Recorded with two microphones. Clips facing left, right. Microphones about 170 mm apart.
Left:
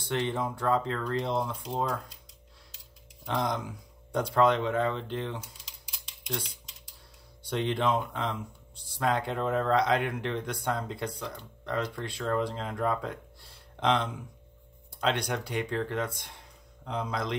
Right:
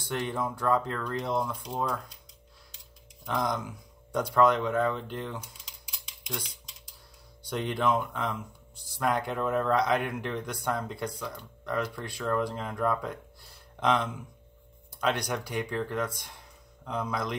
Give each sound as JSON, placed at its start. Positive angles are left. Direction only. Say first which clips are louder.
{"t": 0.0, "sound": "speech", "louder": "left 1 dB", "side_deg": 25}
{"t": 3.3, "sound": "speech", "louder": "even", "side_deg": 30}
{"t": 7.4, "sound": "speech", "louder": "even", "side_deg": 25}